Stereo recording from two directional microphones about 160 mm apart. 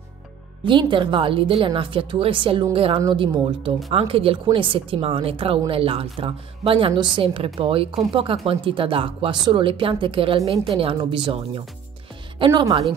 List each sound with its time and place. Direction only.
0.7 s a woman's voice: 30° right (ahead or behind)